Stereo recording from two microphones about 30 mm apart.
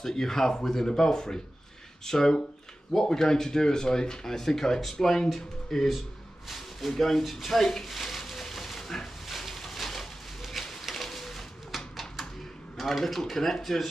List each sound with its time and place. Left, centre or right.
0.0 s speech: centre
6.5 s a sound: centre
12.7 s speech: centre